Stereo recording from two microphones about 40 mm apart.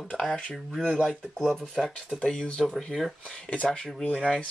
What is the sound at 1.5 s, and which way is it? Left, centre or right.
Speech, centre.